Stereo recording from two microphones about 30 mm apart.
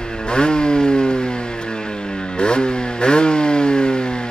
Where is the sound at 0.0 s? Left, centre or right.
Left.